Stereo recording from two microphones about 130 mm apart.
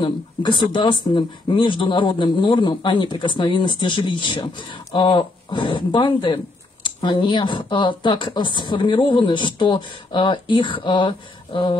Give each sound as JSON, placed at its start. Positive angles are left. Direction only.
{"t": 0.0, "sound": "a man's voice", "side_deg": 35}